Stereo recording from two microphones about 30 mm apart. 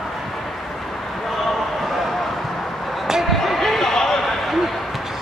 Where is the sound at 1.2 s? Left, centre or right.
Centre.